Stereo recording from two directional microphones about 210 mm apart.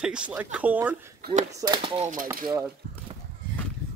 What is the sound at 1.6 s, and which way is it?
Speech, 20° right (ahead or behind).